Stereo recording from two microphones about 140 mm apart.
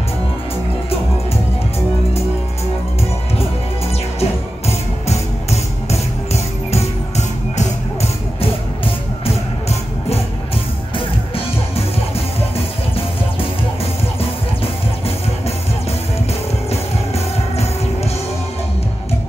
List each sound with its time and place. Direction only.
4.2 s music: 50° left (ahead or behind)
8.4 s music: 40° left (ahead or behind)